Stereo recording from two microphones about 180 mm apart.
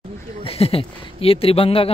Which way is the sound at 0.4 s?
35° left (ahead or behind).